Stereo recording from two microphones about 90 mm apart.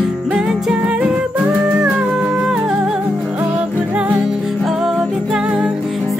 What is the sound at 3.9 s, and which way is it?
Music, 15° right (ahead or behind).